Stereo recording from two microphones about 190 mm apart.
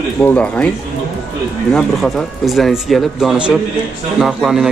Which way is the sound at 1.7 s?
Centre (ahead or behind).